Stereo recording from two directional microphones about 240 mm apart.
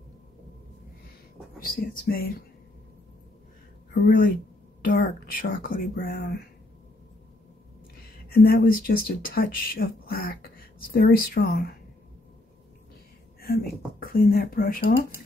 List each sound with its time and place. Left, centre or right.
1.6 s speech: left
4.8 s speech: left
8.3 s speech: left
13.4 s speech: left